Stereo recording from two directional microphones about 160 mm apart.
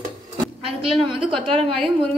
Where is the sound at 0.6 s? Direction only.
35° right (ahead or behind).